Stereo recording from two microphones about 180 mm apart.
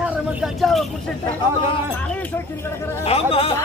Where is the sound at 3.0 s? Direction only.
35° left (ahead or behind).